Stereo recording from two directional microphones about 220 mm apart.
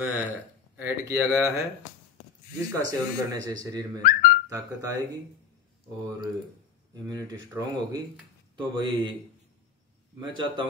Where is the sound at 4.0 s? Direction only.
40° left (ahead or behind).